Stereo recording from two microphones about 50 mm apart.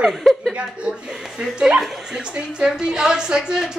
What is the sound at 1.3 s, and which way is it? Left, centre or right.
A woman's voice, centre.